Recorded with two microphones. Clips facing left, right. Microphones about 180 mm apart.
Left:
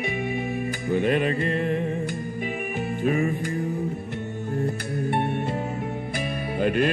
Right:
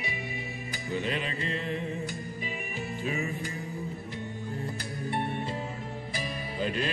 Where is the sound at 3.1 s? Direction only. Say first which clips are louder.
Left 10 dB; 50° left (ahead or behind).